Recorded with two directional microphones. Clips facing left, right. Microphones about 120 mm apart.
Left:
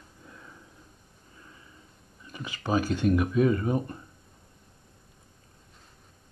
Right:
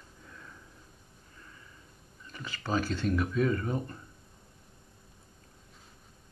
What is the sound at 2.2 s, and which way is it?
Speech, 15° left (ahead or behind).